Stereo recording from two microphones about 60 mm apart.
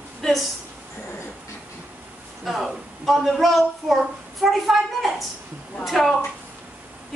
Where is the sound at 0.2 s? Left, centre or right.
Centre.